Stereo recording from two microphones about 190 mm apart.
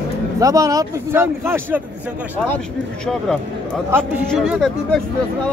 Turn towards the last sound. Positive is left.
turn(degrees=0)  # may be behind; listen again after turning